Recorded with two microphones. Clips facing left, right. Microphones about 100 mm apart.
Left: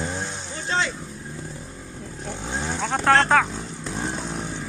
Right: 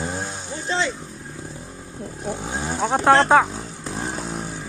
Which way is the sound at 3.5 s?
5° right (ahead or behind).